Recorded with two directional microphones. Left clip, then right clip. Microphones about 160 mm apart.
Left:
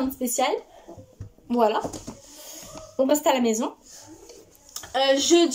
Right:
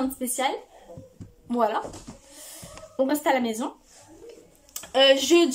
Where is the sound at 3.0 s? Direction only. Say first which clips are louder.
Left 2 dB; 5° left (ahead or behind).